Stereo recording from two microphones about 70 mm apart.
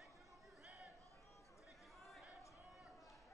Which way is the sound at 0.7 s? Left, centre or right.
Centre.